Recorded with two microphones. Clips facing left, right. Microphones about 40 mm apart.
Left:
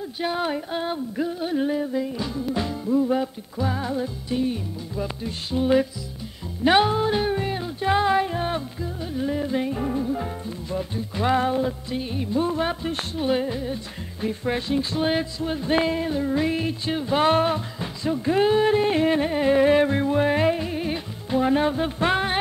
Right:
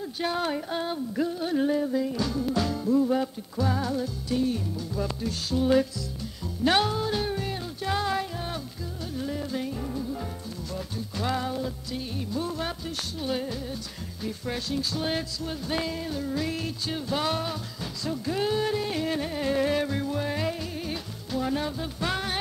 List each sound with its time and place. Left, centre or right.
0.2 s music: centre